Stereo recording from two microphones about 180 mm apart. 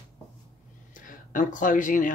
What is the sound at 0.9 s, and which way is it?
Speech, 45° left (ahead or behind).